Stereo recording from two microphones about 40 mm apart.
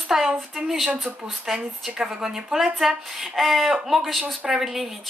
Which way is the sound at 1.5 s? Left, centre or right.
Centre.